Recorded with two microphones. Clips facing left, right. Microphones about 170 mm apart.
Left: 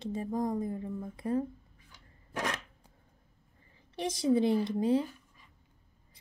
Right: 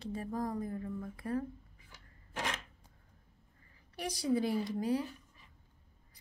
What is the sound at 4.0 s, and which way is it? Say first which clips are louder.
A woman's voice: left 5 dB; 25° left (ahead or behind).